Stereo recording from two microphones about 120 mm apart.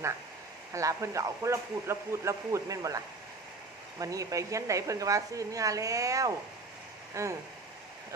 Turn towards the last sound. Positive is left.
turn(degrees=-25)  # may be behind; listen again after turning